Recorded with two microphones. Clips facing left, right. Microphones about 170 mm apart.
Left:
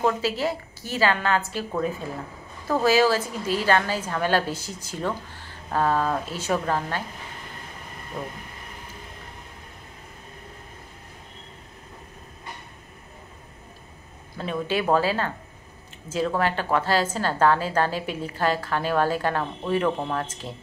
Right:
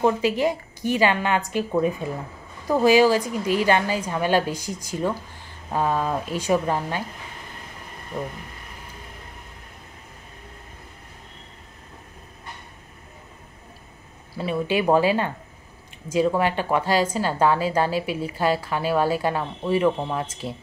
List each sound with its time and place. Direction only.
0.0 s speech: 15° right (ahead or behind)
14.3 s speech: 10° right (ahead or behind)